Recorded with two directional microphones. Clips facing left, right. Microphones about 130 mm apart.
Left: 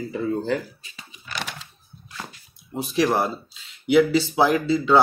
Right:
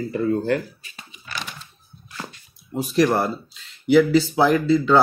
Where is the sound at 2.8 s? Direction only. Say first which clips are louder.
Right 2 dB; 5° left (ahead or behind).